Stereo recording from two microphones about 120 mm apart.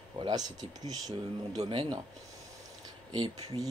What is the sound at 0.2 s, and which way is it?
Speech, 35° right (ahead or behind).